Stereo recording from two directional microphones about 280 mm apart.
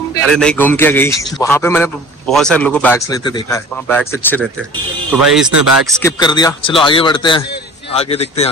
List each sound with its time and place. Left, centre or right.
0.2 s a man's voice: centre
5.5 s speech: right
5.9 s a man's voice: centre